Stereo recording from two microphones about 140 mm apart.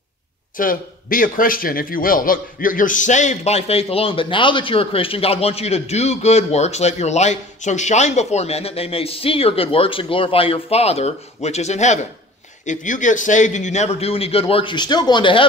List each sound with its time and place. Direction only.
0.6 s a man's voice: 80° left; by 15.4 s 35° left (ahead or behind)